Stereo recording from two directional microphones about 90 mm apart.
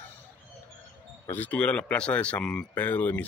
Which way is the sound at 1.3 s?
15° left (ahead or behind).